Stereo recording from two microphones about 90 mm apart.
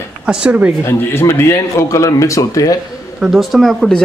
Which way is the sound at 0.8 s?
30° left (ahead or behind).